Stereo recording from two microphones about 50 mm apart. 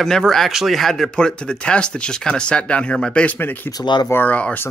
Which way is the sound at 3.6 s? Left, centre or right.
Left.